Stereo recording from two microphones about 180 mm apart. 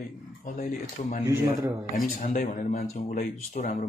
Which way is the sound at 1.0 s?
40° left (ahead or behind).